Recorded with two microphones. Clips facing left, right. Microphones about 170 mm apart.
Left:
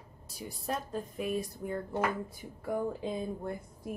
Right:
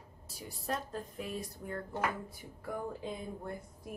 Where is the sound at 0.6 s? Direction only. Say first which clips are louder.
Left 2 dB; 15° left (ahead or behind).